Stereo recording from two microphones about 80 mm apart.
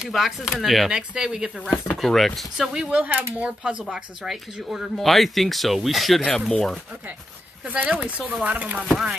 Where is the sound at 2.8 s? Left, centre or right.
Centre.